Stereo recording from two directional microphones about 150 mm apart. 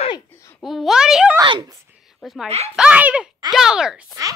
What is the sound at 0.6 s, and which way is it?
A woman's voice, centre (ahead or behind).